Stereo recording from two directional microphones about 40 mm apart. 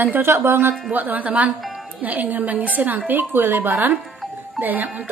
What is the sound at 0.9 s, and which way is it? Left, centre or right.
A woman's voice, right.